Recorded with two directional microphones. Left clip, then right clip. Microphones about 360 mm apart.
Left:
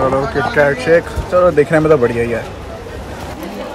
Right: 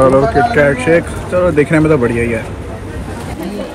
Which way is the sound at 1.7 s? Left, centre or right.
Centre.